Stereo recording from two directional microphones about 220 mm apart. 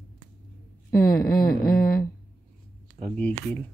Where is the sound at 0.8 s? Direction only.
15° left (ahead or behind).